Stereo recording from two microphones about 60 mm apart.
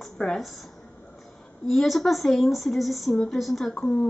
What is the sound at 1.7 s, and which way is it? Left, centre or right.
A woman's voice, centre.